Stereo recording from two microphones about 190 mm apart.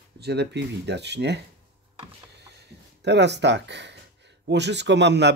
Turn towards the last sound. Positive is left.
turn(degrees=-65)  # may be behind; listen again after turning